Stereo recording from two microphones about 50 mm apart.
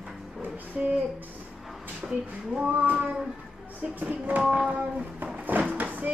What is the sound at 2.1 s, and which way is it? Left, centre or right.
Speech, centre.